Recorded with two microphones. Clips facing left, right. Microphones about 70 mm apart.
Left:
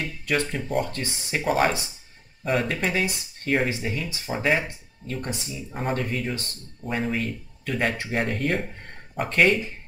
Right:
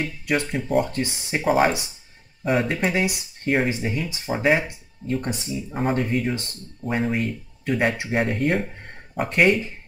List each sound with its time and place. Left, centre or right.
0.0 s speech: centre
5.9 s speech: centre